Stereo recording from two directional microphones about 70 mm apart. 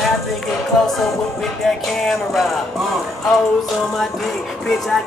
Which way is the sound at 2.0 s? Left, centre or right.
Centre.